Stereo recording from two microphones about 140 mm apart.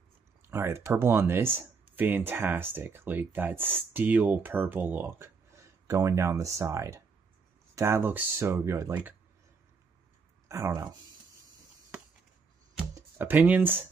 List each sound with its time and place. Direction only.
0.5 s speech: 20° right (ahead or behind)
10.5 s speech: 25° right (ahead or behind)
12.9 s speech: 15° right (ahead or behind)